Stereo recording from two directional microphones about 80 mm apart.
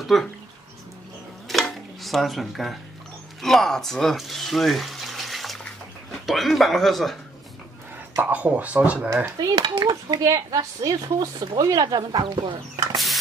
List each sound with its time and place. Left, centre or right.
0.0 s speech: centre
1.5 s dishes: centre
3.4 s speech: centre
8.2 s speech: right
9.4 s a woman's voice: right
9.8 s speech: right
10.2 s a woman's voice: right
12.9 s printer: centre